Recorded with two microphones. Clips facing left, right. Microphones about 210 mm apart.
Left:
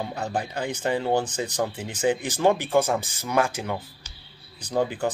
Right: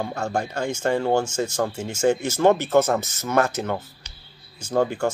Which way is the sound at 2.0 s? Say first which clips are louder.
Right 3 dB; 15° left (ahead or behind).